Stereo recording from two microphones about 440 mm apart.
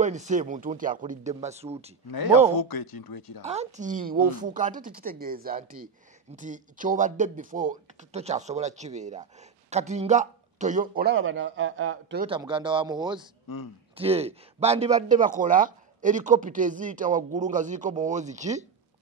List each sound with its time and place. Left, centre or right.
0.0 s speech: centre
2.0 s speech: left
3.4 s speech: centre
12.3 s speech: centre